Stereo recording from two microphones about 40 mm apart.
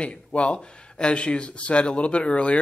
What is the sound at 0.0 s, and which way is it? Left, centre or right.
Speech, left.